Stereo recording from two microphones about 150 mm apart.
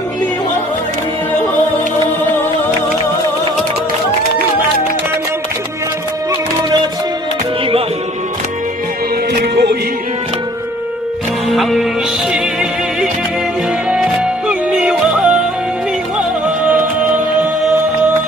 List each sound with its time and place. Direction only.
9.4 s music: 90° right
11.5 s music: centre (ahead or behind)
13.8 s music: 5° right (ahead or behind)